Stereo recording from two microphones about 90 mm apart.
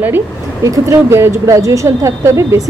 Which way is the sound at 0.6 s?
35° right (ahead or behind).